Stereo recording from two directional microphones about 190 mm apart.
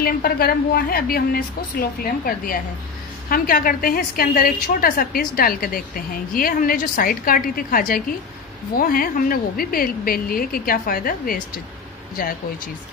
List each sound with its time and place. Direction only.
0.0 s a woman's voice: 50° left (ahead or behind)